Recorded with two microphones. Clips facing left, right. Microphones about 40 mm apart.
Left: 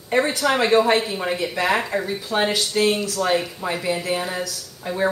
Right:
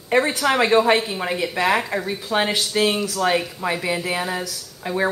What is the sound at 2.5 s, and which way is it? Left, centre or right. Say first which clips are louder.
Speech: even; right.